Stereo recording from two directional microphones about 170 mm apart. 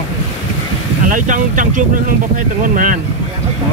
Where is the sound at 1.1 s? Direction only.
50° right (ahead or behind).